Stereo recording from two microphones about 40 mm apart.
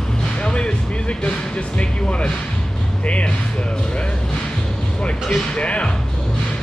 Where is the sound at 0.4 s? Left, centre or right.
Left.